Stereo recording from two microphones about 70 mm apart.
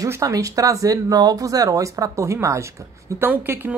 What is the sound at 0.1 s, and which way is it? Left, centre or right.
Speech, right.